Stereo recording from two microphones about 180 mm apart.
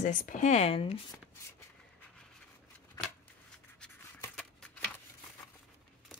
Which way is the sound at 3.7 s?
5° left (ahead or behind).